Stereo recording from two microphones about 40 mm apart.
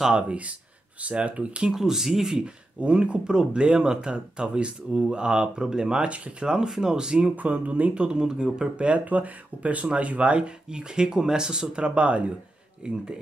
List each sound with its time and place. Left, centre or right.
0.1 s speech: right
1.7 s speech: centre
2.4 s speech: right
6.0 s speech: right
6.4 s speech: centre
7.3 s speech: right
7.9 s speech: right
8.5 s speech: right
9.0 s speech: right
10.7 s speech: centre